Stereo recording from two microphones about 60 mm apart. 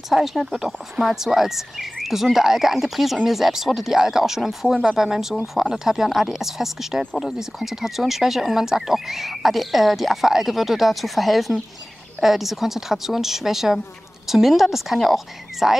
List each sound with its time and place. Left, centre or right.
0.1 s speech: centre